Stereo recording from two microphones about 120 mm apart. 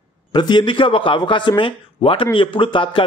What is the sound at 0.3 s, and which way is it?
A man's voice, 40° left (ahead or behind).